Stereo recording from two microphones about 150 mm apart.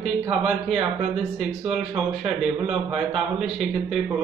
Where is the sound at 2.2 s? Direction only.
5° right (ahead or behind).